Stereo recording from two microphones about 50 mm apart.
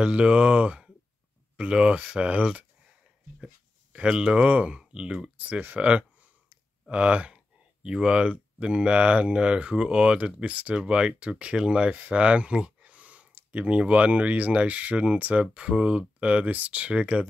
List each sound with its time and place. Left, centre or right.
0.0 s speech: right
4.1 s speech: centre
5.4 s speech: right